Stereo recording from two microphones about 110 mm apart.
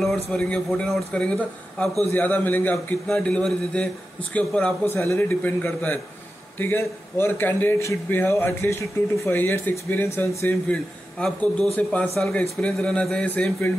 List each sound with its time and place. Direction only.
0.3 s a man's voice: 5° left (ahead or behind)